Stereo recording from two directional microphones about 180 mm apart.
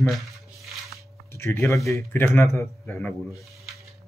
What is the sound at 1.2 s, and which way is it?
Speech, 15° left (ahead or behind).